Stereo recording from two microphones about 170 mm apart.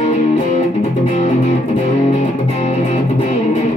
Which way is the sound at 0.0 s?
40° left (ahead or behind).